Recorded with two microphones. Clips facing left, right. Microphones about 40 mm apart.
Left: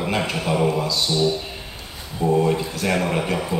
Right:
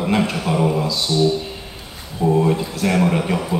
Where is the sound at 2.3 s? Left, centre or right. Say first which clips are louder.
Right 2 dB; centre.